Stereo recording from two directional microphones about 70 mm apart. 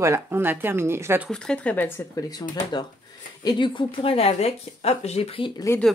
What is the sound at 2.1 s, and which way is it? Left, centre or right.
Speech, left.